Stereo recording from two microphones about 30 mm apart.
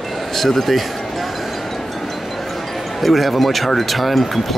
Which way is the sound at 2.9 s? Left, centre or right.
Centre.